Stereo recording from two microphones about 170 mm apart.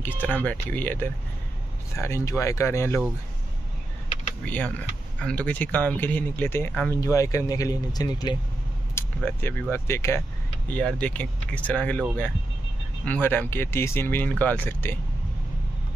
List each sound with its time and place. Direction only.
0.0 s speech: 10° left (ahead or behind)
4.5 s speech: 10° left (ahead or behind)
8.9 s speech: 10° left (ahead or behind)